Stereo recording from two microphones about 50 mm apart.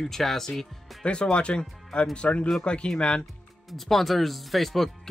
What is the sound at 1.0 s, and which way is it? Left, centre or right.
Speech, left.